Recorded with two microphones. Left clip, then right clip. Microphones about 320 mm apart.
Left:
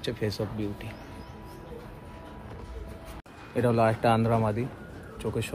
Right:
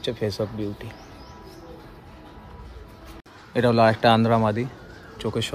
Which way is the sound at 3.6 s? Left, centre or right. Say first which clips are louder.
Right 6 dB; right.